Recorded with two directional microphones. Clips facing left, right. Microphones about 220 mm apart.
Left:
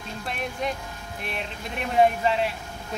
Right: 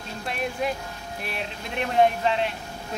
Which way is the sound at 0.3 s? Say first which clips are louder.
Right 2 dB; 5° right (ahead or behind).